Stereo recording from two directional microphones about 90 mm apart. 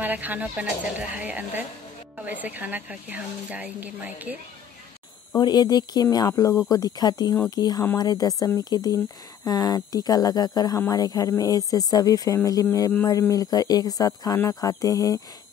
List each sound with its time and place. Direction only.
0.0 s a woman's voice: 20° right (ahead or behind)
5.4 s speech: 50° left (ahead or behind)